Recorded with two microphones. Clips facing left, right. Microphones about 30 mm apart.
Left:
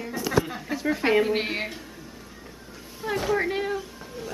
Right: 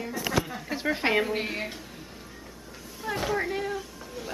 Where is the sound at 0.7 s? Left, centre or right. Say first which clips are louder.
Left 3 dB; right.